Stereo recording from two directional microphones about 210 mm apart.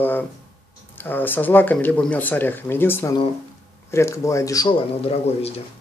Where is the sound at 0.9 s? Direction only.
10° left (ahead or behind).